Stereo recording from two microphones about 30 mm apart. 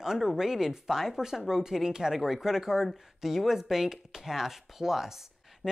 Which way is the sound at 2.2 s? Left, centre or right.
Centre.